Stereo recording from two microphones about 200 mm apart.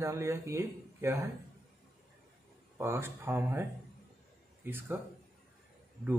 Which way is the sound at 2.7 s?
15° right (ahead or behind).